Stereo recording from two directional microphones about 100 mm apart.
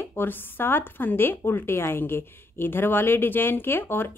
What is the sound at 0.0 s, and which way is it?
A woman's voice, 20° left (ahead or behind).